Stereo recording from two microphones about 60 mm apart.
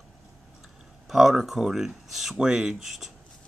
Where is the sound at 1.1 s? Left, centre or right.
Centre.